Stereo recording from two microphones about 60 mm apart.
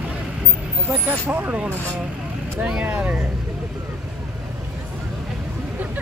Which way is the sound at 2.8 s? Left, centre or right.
Right.